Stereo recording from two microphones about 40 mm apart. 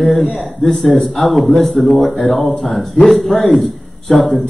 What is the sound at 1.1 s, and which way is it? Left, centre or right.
A man's voice, centre.